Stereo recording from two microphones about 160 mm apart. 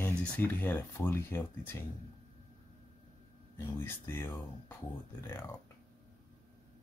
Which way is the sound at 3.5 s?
15° left (ahead or behind).